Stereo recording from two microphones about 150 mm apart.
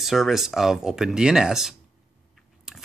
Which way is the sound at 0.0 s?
Centre (ahead or behind).